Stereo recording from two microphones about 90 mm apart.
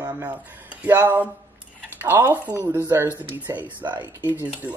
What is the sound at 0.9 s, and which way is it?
Speech, 25° right (ahead or behind).